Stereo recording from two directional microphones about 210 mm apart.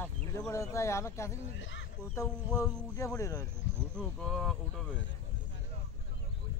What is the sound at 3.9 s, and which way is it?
Speech, 5° left (ahead or behind).